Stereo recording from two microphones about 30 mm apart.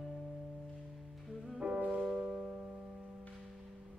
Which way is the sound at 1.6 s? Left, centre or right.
Right.